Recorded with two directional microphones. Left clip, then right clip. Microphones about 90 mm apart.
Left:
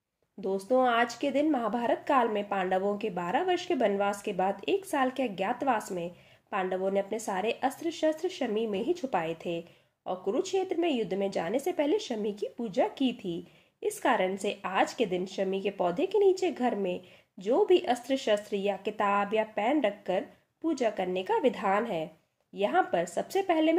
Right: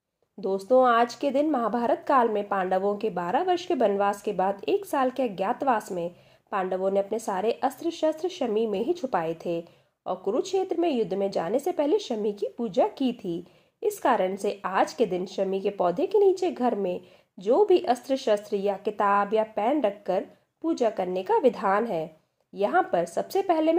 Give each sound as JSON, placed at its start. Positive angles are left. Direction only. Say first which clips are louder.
{"t": 0.4, "sound": "a woman's voice", "louder": "right 5 dB", "side_deg": -20}
{"t": 12.8, "sound": "a woman's voice", "louder": "right 3 dB", "side_deg": -35}
{"t": 17.5, "sound": "a woman's voice", "louder": "right 4 dB", "side_deg": -20}